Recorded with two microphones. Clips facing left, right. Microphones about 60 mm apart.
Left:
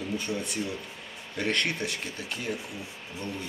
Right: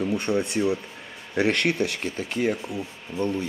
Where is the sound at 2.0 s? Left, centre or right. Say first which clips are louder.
Right 9 dB; right.